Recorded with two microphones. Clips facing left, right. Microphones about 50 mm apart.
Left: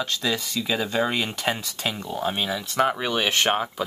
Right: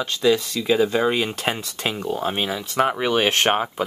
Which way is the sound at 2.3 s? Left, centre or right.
Right.